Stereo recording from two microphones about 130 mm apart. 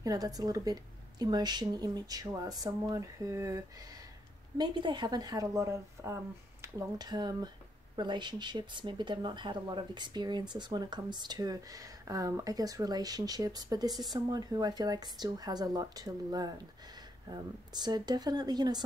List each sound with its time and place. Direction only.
0.0 s speech: 30° right (ahead or behind)
4.6 s speech: 35° right (ahead or behind)